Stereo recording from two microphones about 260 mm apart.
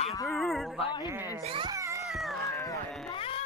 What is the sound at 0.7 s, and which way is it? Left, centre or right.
Speech, left.